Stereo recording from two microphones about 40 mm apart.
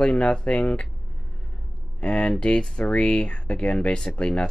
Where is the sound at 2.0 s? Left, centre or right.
Left.